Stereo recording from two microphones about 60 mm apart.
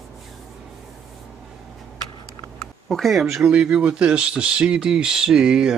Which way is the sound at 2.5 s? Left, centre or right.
Centre.